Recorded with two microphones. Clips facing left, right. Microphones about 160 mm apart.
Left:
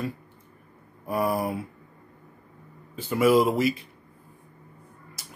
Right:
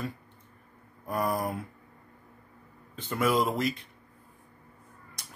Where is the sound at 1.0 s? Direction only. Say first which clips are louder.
Left 4 dB; 5° left (ahead or behind).